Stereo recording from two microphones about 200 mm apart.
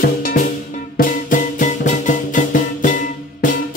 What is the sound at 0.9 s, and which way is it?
Music, 45° left (ahead or behind).